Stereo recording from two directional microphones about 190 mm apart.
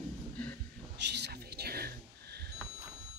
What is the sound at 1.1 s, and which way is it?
Whispering, 60° right (ahead or behind).